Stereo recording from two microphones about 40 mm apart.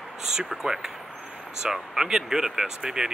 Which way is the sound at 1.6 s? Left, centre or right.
Centre.